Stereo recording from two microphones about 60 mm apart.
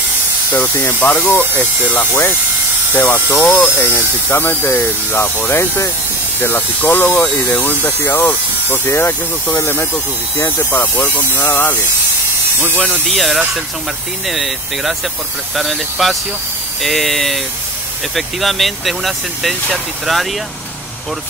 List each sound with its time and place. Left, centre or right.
0.5 s speech: left
2.9 s speech: left
3.4 s speech: left
3.7 s speech: left
10.7 s speech: left
12.5 s speech: right
13.1 s speech: centre